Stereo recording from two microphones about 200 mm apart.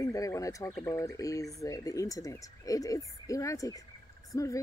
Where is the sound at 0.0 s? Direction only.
15° left (ahead or behind).